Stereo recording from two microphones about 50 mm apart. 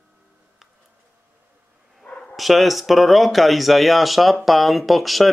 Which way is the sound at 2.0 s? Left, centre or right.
Centre.